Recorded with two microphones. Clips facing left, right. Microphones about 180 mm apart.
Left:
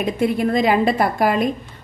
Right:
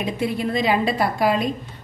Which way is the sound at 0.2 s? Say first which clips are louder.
Left 5 dB; 50° left (ahead or behind).